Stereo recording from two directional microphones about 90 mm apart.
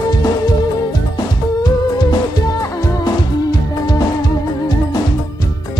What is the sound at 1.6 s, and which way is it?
Music, 50° left (ahead or behind).